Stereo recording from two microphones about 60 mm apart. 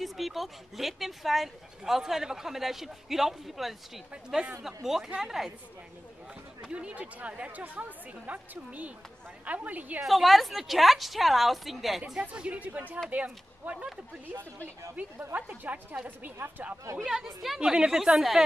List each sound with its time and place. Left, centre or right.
0.0 s a woman's voice: centre
6.6 s speech: centre
10.0 s speech: centre
12.2 s speech: centre
15.3 s speech: right
17.0 s a woman's voice: centre